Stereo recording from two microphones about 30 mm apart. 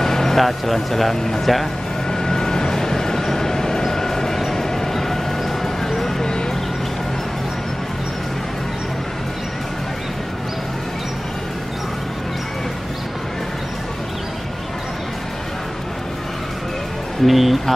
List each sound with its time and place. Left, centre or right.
0.0 s a sound: centre
0.4 s a man's voice: centre
2.0 s vehicle: centre
4.6 s dog: centre
5.9 s a sound: centre
17.3 s a man's voice: centre